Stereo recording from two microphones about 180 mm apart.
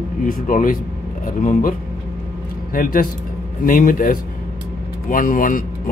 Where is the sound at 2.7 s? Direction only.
50° left (ahead or behind).